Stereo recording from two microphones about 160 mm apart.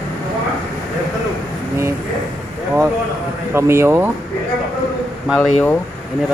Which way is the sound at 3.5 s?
15° right (ahead or behind).